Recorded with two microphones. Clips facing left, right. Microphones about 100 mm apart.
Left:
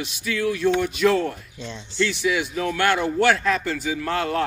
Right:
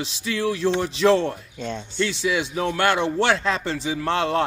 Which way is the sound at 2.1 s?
30° right (ahead or behind).